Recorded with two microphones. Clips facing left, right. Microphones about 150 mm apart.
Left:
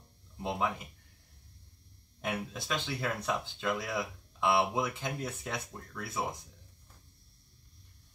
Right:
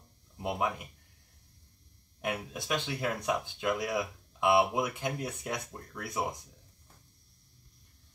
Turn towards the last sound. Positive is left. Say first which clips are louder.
# right 2 dB
turn(degrees=-15)  # may be behind; listen again after turning